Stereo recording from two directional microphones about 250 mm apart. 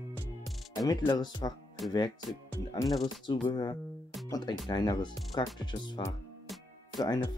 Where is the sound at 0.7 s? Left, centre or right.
Centre.